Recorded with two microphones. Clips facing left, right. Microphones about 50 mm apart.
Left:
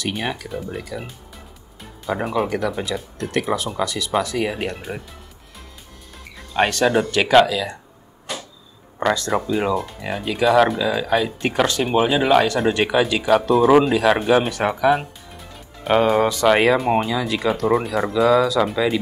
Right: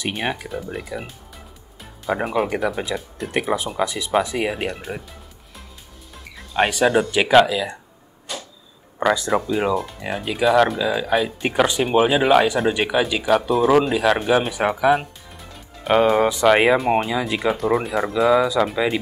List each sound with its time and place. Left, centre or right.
0.0 s speech: centre
2.0 s speech: centre
4.5 s speech: centre
6.3 s speech: centre
9.0 s speech: centre
17.1 s speech: centre
17.6 s speech: centre